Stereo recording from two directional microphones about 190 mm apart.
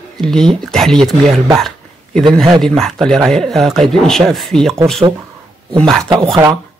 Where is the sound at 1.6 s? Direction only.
Centre (ahead or behind).